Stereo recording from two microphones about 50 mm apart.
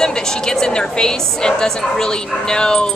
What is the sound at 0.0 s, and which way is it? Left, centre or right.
A woman's voice, centre.